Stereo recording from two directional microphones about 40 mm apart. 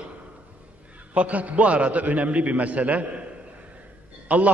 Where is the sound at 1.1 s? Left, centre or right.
Right.